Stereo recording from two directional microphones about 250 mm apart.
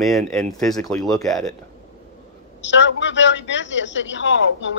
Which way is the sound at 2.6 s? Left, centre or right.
Left.